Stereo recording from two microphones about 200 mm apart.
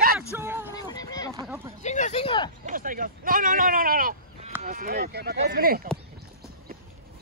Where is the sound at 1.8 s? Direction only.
35° left (ahead or behind).